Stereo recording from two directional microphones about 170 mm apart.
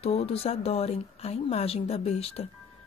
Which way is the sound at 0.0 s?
35° left (ahead or behind).